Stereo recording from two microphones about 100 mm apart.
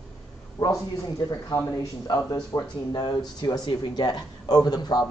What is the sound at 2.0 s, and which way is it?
A man's voice, 40° left (ahead or behind).